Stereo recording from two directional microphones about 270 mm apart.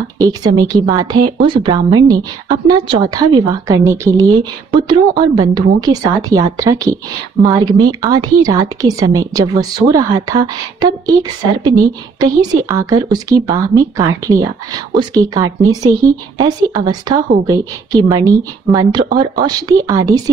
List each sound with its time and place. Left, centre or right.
0.2 s speech: centre